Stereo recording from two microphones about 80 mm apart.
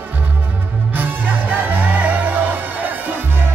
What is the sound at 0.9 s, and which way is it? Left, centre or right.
Music, right.